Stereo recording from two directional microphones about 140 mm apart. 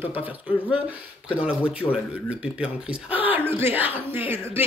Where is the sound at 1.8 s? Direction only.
20° left (ahead or behind).